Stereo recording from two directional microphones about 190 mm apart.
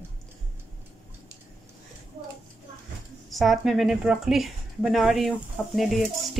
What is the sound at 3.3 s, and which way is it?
Speech, centre (ahead or behind).